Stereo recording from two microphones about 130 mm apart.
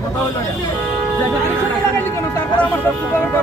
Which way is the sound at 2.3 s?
15° left (ahead or behind).